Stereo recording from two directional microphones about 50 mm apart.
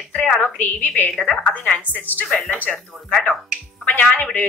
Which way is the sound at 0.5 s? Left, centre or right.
Left.